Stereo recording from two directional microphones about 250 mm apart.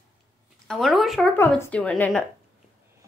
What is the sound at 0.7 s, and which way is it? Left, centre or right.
Speech, centre.